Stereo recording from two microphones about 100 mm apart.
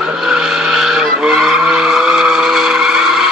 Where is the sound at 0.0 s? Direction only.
5° right (ahead or behind).